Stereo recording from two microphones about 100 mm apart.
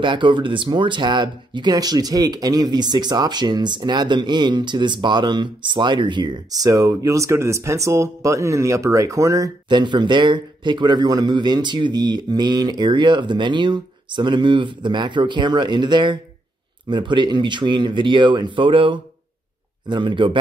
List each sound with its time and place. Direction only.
0.0 s speech: 55° right (ahead or behind); by 9.5 s 35° right (ahead or behind)
9.7 s speech: 50° right (ahead or behind)